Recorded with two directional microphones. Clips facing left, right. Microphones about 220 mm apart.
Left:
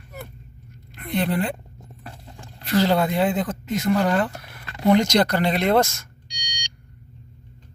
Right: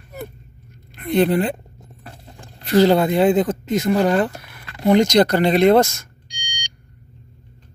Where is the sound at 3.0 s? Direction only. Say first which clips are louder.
Right 6 dB; 25° right (ahead or behind).